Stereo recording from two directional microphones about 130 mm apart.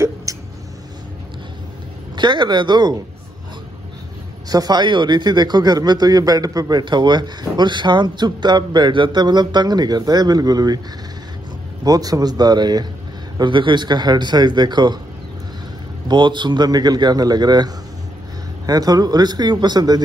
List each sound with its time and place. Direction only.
0.0 s a sound: 25° right (ahead or behind)
2.1 s speech: 35° right (ahead or behind)
4.5 s speech: 30° right (ahead or behind)
11.8 s a man's voice: 30° right (ahead or behind)
16.1 s speech: 35° right (ahead or behind)